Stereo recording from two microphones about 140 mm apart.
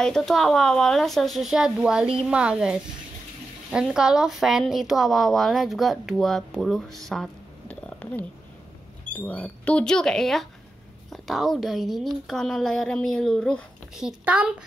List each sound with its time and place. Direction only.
0.0 s a woman's voice: 5° left (ahead or behind)
7.1 s a sound: 5° left (ahead or behind)
9.1 s a woman's voice: 10° left (ahead or behind)
13.9 s speech: 5° right (ahead or behind)